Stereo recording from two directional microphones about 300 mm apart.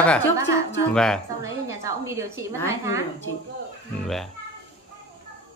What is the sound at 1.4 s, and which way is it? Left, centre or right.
A woman's voice, centre.